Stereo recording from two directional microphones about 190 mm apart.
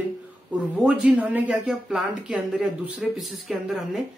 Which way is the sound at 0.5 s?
5° right (ahead or behind).